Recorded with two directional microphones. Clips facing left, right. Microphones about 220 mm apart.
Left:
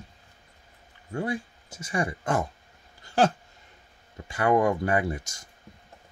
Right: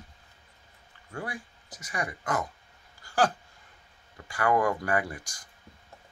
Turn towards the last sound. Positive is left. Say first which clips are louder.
# left 4 dB
turn(degrees=25)  # may be behind; listen again after turning